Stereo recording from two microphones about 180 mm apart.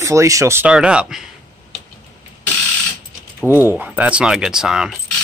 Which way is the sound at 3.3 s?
10° right (ahead or behind).